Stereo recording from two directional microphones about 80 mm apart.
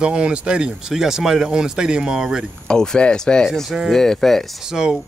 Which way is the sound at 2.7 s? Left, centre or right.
Centre.